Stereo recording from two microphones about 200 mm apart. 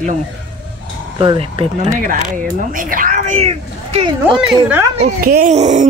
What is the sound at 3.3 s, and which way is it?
Speech, 30° right (ahead or behind).